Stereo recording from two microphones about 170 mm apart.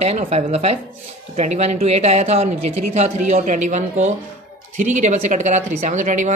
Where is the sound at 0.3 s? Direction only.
40° right (ahead or behind).